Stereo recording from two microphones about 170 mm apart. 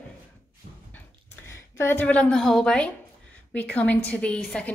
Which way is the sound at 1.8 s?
10° left (ahead or behind).